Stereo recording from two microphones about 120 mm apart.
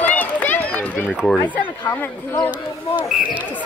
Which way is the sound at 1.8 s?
15° left (ahead or behind).